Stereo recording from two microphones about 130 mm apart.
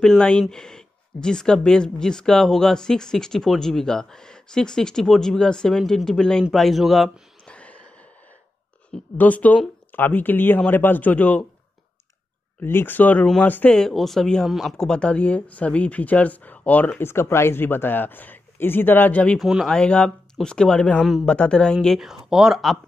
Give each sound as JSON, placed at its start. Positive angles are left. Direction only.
{"t": 0.0, "sound": "speech", "side_deg": 5}
{"t": 9.2, "sound": "speech", "side_deg": 10}
{"t": 12.6, "sound": "speech", "side_deg": 15}
{"t": 19.4, "sound": "speech", "side_deg": 0}